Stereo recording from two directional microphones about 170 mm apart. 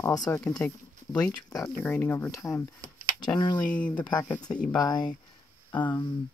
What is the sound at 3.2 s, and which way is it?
Speech, 25° left (ahead or behind).